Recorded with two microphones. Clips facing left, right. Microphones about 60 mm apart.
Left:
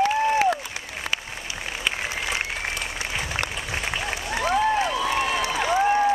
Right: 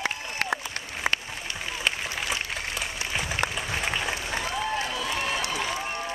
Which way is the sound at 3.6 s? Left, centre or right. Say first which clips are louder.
Even; centre.